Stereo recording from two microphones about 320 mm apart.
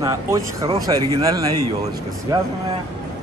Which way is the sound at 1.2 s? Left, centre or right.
Centre.